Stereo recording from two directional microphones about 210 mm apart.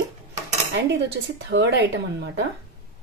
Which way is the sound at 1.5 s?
55° right (ahead or behind).